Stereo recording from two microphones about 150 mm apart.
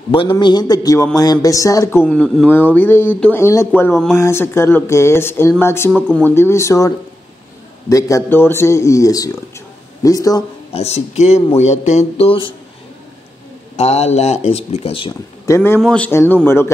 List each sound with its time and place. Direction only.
0.1 s speech: 35° left (ahead or behind)
7.9 s speech: 20° left (ahead or behind)
10.7 s speech: 45° left (ahead or behind)
13.7 s speech: 45° left (ahead or behind)
15.4 s a man's voice: 15° left (ahead or behind)
15.8 s speech: 5° left (ahead or behind)